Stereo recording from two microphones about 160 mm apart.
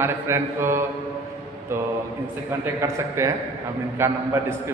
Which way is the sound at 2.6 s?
15° right (ahead or behind).